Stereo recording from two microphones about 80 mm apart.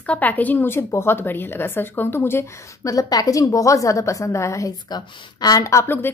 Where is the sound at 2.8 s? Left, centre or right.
Left.